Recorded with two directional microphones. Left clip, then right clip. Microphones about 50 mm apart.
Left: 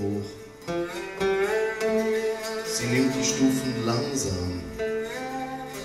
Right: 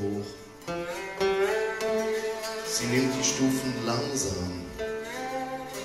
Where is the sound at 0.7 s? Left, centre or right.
Right.